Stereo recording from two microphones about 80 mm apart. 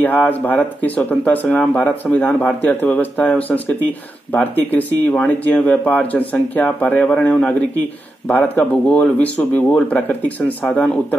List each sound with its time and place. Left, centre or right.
0.0 s speech: left